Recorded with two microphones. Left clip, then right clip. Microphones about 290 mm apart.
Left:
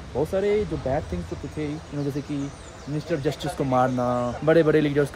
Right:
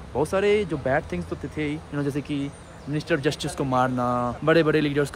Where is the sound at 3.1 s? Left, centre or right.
Centre.